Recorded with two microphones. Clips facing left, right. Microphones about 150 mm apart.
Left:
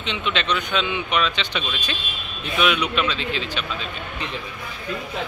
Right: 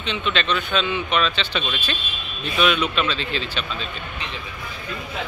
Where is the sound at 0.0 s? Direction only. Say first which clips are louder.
Right 1 dB; 20° left (ahead or behind).